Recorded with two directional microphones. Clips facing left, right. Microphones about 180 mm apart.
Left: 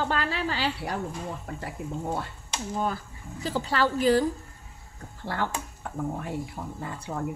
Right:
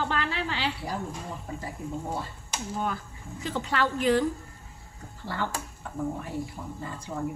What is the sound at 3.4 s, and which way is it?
Speech, 35° left (ahead or behind).